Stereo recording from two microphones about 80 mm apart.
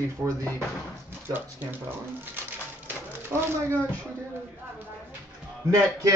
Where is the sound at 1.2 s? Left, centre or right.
Right.